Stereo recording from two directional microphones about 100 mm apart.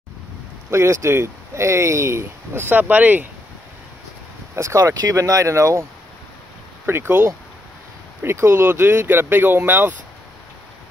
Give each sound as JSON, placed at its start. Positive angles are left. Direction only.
{"t": 0.7, "sound": "speech", "side_deg": -30}
{"t": 4.6, "sound": "speech", "side_deg": -30}
{"t": 6.9, "sound": "speech", "side_deg": -20}